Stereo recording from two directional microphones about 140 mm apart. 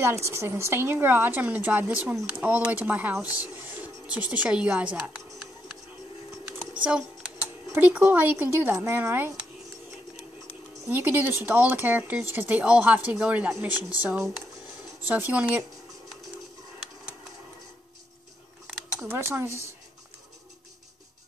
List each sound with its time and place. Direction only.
0.0 s speech: 20° right (ahead or behind)
7.7 s speech: 10° right (ahead or behind)
10.9 s speech: 15° right (ahead or behind)
19.0 s speech: 15° right (ahead or behind)